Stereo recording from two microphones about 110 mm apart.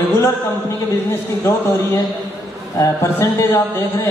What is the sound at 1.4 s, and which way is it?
Speech, 25° left (ahead or behind).